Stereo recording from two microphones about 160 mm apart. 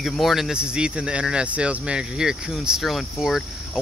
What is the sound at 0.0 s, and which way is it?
Speech, centre (ahead or behind).